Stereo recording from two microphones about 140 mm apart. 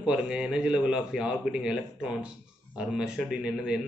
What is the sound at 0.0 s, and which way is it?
A man's voice, 5° right (ahead or behind).